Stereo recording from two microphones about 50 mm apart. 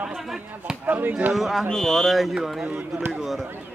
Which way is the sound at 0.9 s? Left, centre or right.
Right.